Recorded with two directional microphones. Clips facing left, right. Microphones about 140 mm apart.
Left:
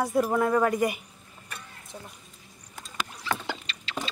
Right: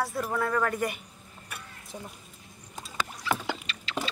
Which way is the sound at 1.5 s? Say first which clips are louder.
Even; 10° right (ahead or behind).